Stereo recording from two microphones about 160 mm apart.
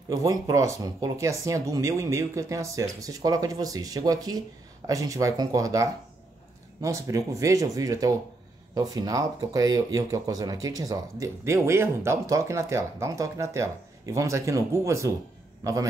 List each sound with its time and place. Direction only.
0.1 s speech: 20° right (ahead or behind)